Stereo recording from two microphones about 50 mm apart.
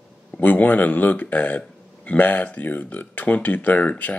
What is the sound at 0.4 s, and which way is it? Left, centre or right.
Speech, left.